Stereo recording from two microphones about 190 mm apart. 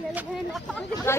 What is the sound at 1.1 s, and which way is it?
Speech, 15° left (ahead or behind).